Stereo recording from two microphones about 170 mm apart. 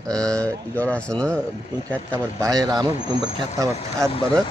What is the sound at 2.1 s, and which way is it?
Speech, 20° right (ahead or behind).